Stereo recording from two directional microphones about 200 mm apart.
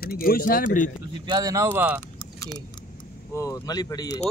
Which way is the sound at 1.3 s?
20° right (ahead or behind).